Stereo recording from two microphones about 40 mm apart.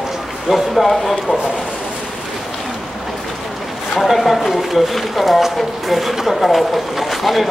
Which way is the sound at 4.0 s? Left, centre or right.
Centre.